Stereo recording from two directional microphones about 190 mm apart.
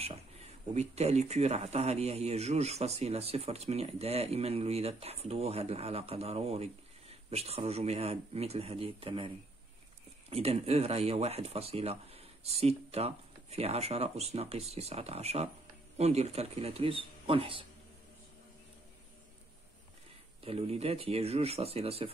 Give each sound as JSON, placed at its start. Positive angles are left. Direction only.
{"t": 0.0, "sound": "speech", "side_deg": -35}
{"t": 10.3, "sound": "speech", "side_deg": -30}
{"t": 20.4, "sound": "speech", "side_deg": -30}